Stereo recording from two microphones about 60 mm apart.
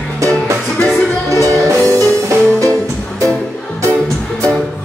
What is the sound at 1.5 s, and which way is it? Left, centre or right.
Music, right.